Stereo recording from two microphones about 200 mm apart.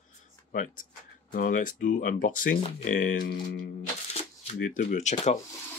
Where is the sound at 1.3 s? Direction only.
40° left (ahead or behind).